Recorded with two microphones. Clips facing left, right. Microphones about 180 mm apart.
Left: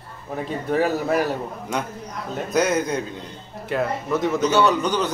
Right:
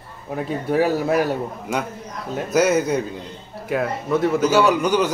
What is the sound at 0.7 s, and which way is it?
A man's voice, 10° right (ahead or behind).